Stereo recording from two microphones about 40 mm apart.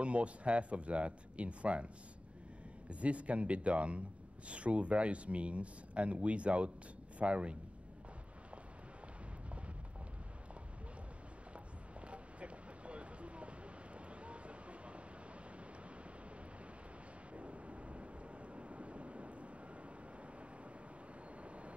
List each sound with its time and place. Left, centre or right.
0.0 s speech: right
2.9 s speech: right
12.0 s vehicle: right
17.3 s vehicle: right
21.4 s vehicle: right